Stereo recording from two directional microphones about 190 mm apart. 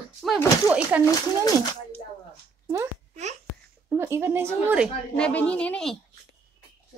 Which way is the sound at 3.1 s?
35° right (ahead or behind).